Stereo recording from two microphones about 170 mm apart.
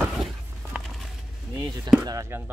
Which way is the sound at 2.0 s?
20° right (ahead or behind).